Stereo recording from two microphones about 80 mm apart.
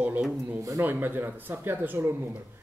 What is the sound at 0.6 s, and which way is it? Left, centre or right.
Speech, right.